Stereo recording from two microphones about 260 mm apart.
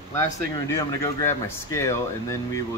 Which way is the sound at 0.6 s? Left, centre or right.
Centre.